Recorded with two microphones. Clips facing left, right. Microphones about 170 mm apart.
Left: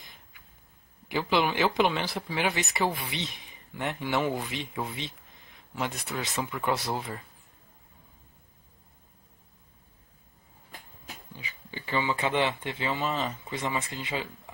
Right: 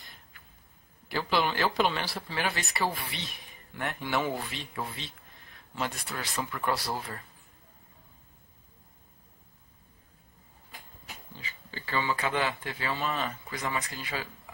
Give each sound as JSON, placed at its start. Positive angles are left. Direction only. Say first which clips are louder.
{"t": 1.0, "sound": "speech", "louder": "left 2 dB", "side_deg": 20}
{"t": 11.3, "sound": "speech", "louder": "left 2 dB", "side_deg": 15}